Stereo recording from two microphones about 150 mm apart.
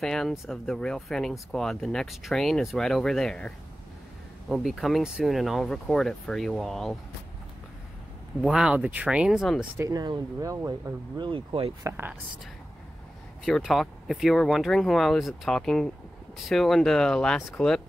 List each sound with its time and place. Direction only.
0.0 s speech: 5° left (ahead or behind)
8.4 s speech: 5° right (ahead or behind)
9.8 s speech: 25° right (ahead or behind)
11.1 s speech: 35° right (ahead or behind)
13.5 s speech: centre (ahead or behind)